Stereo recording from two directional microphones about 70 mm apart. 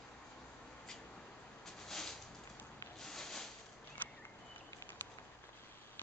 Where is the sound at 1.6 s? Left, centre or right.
Centre.